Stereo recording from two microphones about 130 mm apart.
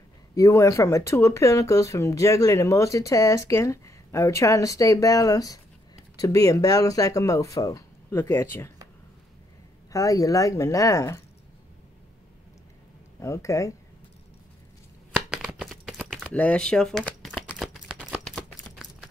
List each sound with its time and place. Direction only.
0.4 s speech: 25° left (ahead or behind)
9.9 s speech: 25° left (ahead or behind)
13.2 s speech: 25° left (ahead or behind)
15.2 s a sound: 5° right (ahead or behind)
16.3 s speech: 10° left (ahead or behind)
17.5 s a sound: 5° right (ahead or behind)